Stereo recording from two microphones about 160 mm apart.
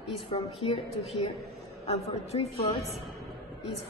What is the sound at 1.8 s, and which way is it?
A woman's voice, 40° left (ahead or behind).